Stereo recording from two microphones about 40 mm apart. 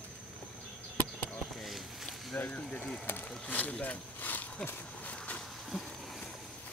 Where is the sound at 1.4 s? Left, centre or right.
Centre.